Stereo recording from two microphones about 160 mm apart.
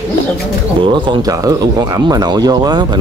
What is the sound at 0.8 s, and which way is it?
Speech, 30° right (ahead or behind).